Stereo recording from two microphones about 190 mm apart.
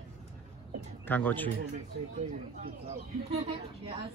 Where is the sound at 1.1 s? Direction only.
10° left (ahead or behind).